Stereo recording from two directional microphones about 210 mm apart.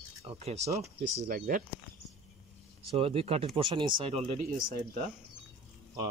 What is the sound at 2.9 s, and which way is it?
Speech, 25° right (ahead or behind).